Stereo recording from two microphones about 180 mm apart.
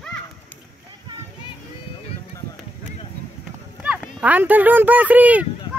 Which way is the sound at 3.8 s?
5° right (ahead or behind).